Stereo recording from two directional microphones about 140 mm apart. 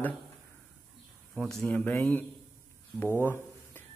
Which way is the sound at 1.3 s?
Centre (ahead or behind).